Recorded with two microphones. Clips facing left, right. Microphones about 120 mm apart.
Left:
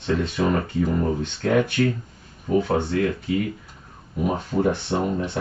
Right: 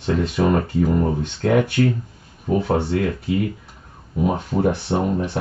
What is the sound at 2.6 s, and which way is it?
Speech, 15° right (ahead or behind).